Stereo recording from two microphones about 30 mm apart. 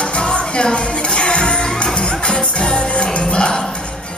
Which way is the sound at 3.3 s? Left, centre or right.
Left.